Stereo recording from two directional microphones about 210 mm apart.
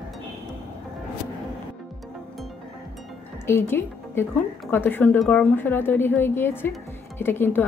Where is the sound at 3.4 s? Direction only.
10° left (ahead or behind).